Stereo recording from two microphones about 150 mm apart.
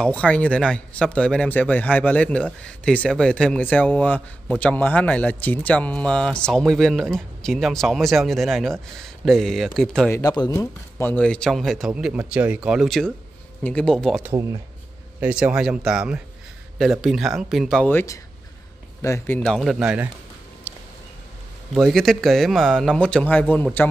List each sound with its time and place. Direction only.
0.0 s speech: 10° left (ahead or behind)
10.1 s speech: 25° left (ahead or behind); by 14.2 s 5° left (ahead or behind)
15.1 s speech: 10° right (ahead or behind)
17.8 s speech: 15° left (ahead or behind)
19.4 s speech: centre (ahead or behind)
20.7 s a sound: 10° right (ahead or behind)
21.7 s speech: centre (ahead or behind)